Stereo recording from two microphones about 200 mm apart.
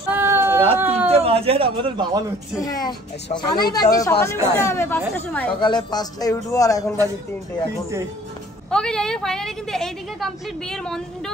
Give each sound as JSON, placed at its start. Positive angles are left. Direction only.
{"t": 0.1, "sound": "a sound", "side_deg": -10}
{"t": 1.0, "sound": "a man's voice", "side_deg": -30}
{"t": 2.6, "sound": "a woman's voice", "side_deg": 20}
{"t": 5.6, "sound": "a man's voice", "side_deg": 20}
{"t": 8.6, "sound": "a woman's voice", "side_deg": 5}